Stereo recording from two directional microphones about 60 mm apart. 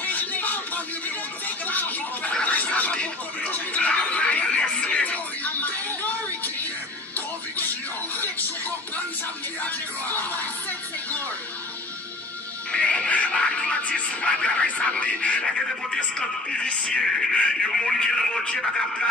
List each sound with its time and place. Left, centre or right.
0.0 s music: left
1.7 s speech: left
2.4 s music: left
8.2 s music: left
12.7 s music: centre
16.0 s speech: centre